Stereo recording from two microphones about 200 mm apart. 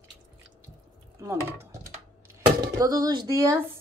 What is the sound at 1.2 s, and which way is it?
A woman's voice, 15° right (ahead or behind).